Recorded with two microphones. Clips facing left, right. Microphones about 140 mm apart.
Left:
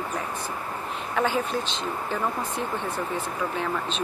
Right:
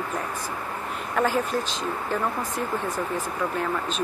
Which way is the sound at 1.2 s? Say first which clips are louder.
Right 2 dB; centre (ahead or behind).